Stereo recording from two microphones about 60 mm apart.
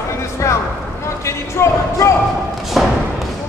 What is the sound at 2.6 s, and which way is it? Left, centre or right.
Thump, centre.